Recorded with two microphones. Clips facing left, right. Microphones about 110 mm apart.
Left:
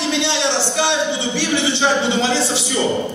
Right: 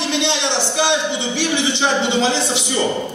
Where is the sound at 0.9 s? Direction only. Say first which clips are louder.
Even; 20° right (ahead or behind).